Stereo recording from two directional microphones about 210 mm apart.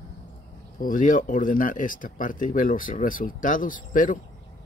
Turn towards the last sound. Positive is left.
turn(degrees=40)  # may be behind; listen again after turning